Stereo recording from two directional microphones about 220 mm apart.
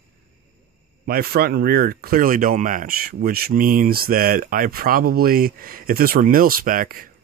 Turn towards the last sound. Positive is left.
turn(degrees=-40)  # may be behind; listen again after turning